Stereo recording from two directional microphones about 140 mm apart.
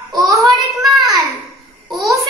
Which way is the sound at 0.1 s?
25° right (ahead or behind).